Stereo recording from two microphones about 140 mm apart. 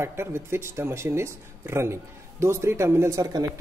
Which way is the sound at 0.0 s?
15° right (ahead or behind).